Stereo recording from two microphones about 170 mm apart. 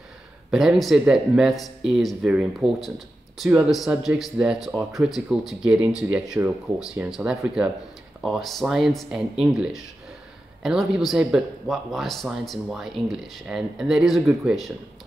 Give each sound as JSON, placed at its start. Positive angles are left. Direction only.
{"t": 0.5, "sound": "speech", "side_deg": 0}